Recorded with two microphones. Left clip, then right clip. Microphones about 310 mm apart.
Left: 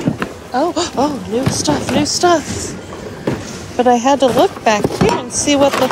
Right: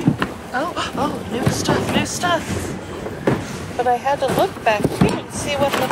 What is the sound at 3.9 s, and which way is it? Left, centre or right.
Speech, left.